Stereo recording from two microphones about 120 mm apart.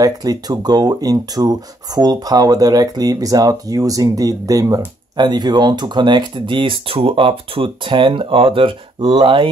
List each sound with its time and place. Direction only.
0.0 s speech: 30° right (ahead or behind)